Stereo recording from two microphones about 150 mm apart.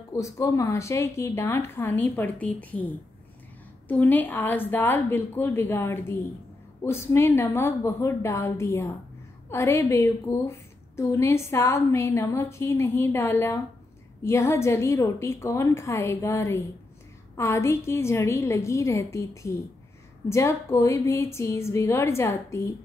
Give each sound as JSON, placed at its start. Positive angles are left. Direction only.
{"t": 0.1, "sound": "a woman's voice", "side_deg": 20}